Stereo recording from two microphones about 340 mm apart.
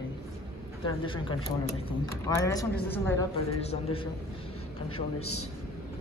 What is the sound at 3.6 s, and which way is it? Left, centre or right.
Speech, centre.